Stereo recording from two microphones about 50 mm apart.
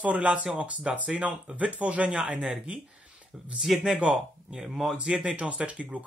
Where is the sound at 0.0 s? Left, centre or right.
Right.